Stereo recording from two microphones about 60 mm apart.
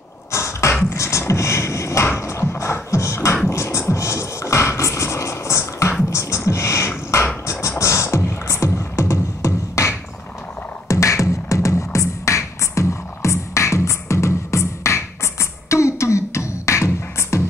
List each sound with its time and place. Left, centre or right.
0.3 s beatboxing: left
3.4 s music: left
6.0 s beatboxing: left
7.1 s music: left
7.4 s beatboxing: left
10.9 s music: left